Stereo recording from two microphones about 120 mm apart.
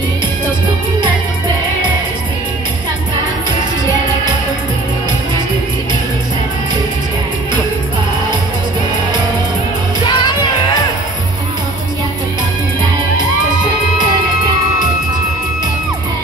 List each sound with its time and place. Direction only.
10.0 s music: 40° left (ahead or behind)